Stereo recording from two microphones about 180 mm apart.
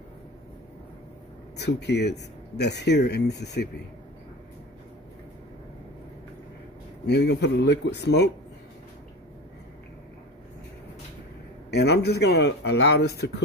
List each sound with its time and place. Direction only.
1.6 s speech: 70° left (ahead or behind)
7.1 s speech: 70° left (ahead or behind)
11.7 s speech: 70° left (ahead or behind)